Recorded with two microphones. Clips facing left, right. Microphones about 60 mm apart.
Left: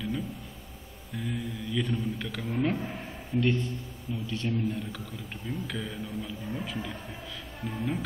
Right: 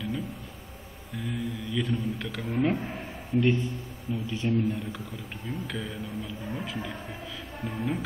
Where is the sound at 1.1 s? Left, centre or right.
Centre.